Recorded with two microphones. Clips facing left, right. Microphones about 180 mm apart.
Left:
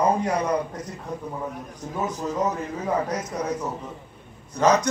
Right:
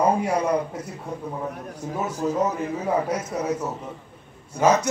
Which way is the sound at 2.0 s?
10° right (ahead or behind).